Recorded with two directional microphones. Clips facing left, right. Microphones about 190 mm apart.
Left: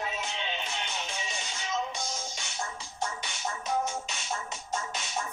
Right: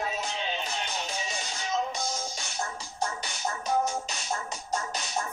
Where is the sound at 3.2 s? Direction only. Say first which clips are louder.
Right 3 dB; 35° right (ahead or behind).